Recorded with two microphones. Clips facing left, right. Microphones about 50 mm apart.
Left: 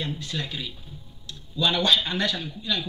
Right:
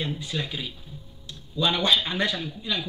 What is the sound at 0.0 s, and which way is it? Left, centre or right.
Speech, centre.